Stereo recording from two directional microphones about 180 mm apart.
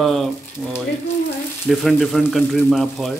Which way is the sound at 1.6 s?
Centre (ahead or behind).